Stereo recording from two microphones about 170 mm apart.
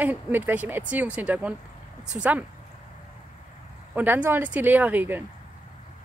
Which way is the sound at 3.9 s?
10° right (ahead or behind).